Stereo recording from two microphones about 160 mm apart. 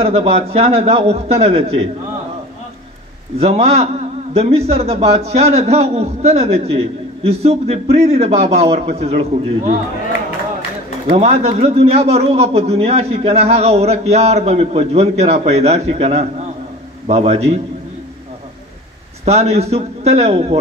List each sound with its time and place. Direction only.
0.0 s speech: 40° right (ahead or behind)
3.3 s speech: 40° right (ahead or behind)
11.1 s a man's voice: 40° right (ahead or behind)
19.2 s speech: 40° right (ahead or behind)